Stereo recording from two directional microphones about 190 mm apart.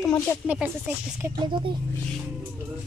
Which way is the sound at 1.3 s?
25° right (ahead or behind).